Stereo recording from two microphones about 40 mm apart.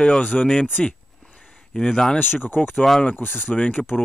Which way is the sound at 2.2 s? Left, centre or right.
Left.